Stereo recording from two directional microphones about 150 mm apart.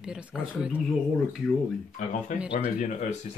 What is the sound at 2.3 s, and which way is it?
Speech, 55° left (ahead or behind).